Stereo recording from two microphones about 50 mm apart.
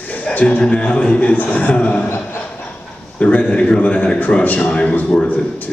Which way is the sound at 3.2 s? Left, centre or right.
Left.